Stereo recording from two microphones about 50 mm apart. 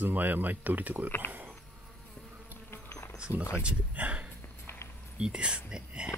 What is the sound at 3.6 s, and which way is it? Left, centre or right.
Speech, right.